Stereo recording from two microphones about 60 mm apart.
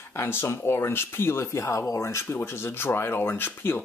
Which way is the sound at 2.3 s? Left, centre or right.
Left.